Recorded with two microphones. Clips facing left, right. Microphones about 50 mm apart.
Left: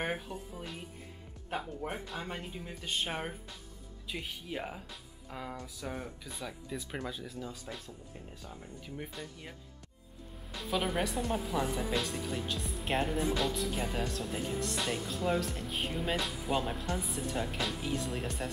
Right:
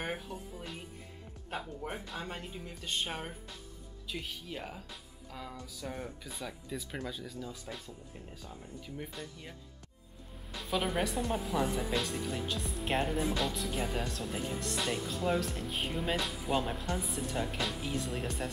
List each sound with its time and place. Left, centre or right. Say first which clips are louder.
0.0 s a woman's voice: left 2 dB; centre
5.3 s music: left 3 dB; centre
5.8 s a woman's voice: right 2 dB; centre
10.5 s a woman's voice: even; centre